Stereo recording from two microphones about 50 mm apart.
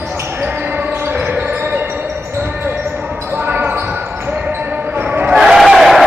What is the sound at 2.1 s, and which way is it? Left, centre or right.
Basketball bounce, right.